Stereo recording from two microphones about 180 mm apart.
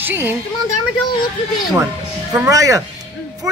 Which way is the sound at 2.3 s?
15° right (ahead or behind).